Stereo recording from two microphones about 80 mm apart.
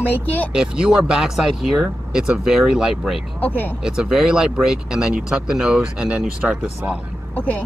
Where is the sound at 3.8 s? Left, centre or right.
Centre.